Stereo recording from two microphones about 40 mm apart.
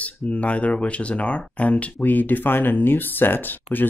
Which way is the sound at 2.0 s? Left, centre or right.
Left.